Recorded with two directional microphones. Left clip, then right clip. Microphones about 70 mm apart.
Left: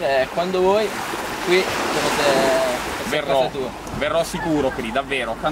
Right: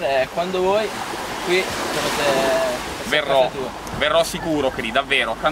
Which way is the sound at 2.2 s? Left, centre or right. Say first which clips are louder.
Left 1 dB; centre.